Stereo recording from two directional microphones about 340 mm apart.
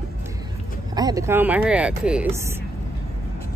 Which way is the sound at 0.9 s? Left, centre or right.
Centre.